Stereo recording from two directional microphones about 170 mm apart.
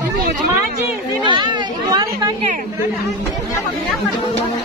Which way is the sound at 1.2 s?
25° right (ahead or behind).